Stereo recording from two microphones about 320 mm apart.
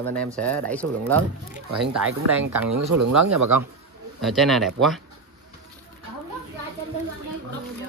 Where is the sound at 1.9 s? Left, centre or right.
Right.